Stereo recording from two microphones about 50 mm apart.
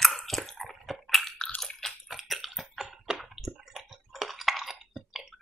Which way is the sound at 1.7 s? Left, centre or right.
Centre.